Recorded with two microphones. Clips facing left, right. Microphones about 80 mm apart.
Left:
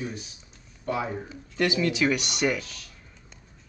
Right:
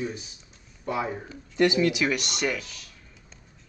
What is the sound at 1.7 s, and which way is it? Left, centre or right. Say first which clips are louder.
Speech: right 1 dB; centre.